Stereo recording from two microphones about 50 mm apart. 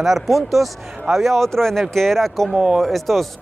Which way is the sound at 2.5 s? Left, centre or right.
Centre.